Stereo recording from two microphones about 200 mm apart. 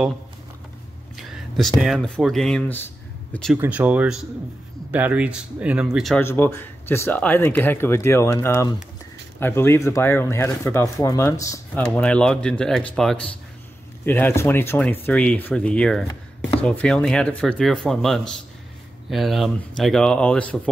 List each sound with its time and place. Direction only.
1.1 s speech: centre (ahead or behind)
3.5 s speech: 10° right (ahead or behind)
6.2 s speech: 10° left (ahead or behind)